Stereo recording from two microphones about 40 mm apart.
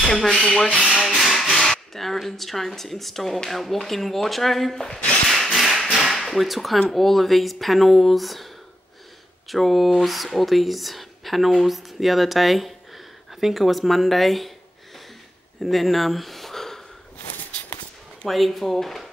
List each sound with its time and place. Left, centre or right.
0.0 s rub: centre
1.0 s music: centre
3.4 s speech: centre
4.7 s rub: centre
5.3 s tap: centre
6.0 s speech: centre
9.5 s speech: centre
15.6 s a sound: centre
18.3 s speech: centre